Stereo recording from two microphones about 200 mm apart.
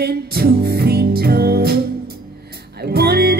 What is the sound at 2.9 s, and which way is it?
Music, 55° right (ahead or behind).